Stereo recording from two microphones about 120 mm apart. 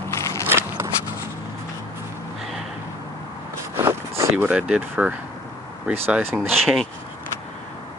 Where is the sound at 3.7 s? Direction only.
20° right (ahead or behind).